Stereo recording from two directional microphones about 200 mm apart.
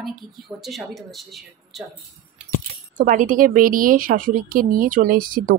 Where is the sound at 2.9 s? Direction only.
40° right (ahead or behind).